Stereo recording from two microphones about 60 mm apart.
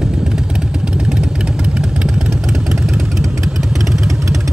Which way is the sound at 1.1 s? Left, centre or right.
Centre.